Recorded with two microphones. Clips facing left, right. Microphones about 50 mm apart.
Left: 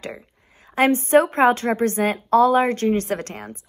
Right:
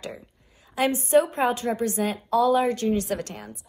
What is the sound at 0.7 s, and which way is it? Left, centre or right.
Speech, left.